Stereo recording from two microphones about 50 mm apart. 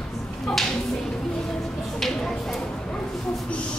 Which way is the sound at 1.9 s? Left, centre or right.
Centre.